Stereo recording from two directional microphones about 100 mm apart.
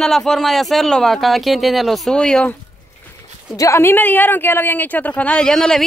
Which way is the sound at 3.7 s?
20° left (ahead or behind).